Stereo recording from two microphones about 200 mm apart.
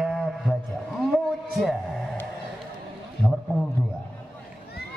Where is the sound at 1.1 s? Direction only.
Centre (ahead or behind).